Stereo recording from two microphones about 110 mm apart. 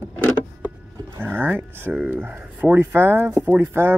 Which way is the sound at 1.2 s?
15° right (ahead or behind).